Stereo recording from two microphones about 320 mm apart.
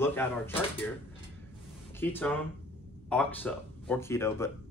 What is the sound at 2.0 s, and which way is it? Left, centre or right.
Speech, centre.